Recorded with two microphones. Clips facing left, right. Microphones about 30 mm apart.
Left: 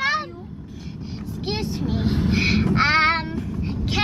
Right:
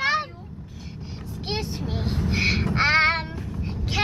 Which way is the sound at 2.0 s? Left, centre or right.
Left.